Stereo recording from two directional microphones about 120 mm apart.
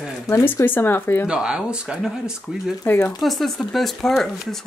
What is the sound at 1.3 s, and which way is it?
Speech, 10° right (ahead or behind).